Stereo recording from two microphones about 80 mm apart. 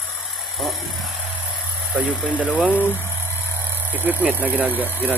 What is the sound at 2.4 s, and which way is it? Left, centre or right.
Speech, centre.